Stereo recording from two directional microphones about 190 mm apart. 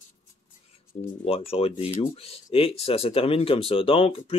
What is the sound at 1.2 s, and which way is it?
Speech, 30° left (ahead or behind).